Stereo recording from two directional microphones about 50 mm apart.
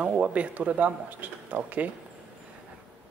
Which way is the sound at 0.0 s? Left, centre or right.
Right.